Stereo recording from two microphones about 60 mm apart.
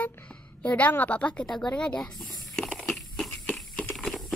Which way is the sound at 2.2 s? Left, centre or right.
Centre.